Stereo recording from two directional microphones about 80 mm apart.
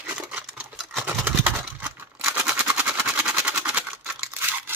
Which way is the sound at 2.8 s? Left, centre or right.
Centre.